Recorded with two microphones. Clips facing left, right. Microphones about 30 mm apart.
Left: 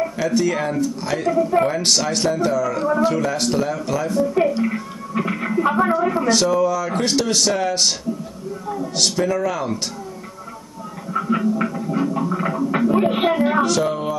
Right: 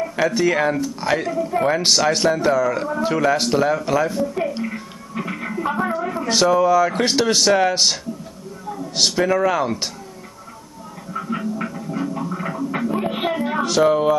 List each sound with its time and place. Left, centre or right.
0.3 s speech: centre
1.3 s speech: centre
1.7 s speech: centre
4.3 s a sound: centre
6.2 s speech: centre
8.9 s speech: centre
11.1 s a sound: centre
13.7 s speech: centre